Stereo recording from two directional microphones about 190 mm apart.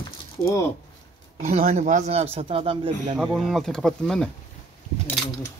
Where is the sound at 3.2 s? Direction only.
Centre (ahead or behind).